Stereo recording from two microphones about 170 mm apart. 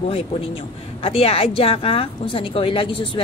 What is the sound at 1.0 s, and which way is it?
A woman's voice, 35° left (ahead or behind).